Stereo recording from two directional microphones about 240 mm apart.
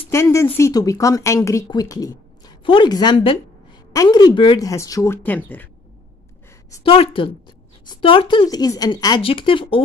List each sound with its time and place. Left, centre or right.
0.1 s speech: centre
6.8 s a woman's voice: left